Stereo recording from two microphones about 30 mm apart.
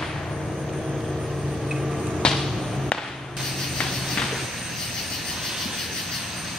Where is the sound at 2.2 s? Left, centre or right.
Left.